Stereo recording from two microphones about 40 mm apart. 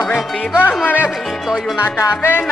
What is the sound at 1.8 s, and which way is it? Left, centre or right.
Music, left.